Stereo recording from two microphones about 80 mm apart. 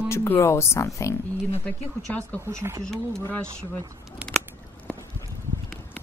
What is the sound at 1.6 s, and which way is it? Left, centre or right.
Speech, centre.